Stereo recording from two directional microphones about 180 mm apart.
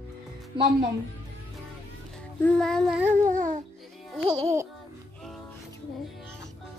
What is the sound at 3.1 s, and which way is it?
Babbling, 45° right (ahead or behind).